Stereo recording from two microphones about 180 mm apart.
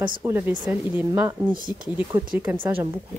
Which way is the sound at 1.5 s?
50° right (ahead or behind).